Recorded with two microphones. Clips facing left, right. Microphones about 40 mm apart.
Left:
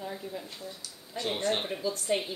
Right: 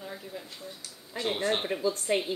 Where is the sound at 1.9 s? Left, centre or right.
Right.